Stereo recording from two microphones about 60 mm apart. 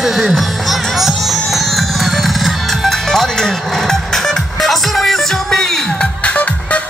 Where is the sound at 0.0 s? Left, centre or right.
Centre.